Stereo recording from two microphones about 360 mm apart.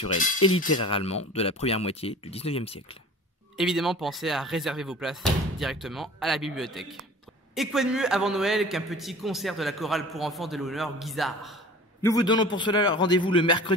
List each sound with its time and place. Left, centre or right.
0.8 s speech: centre
3.5 s a man's voice: centre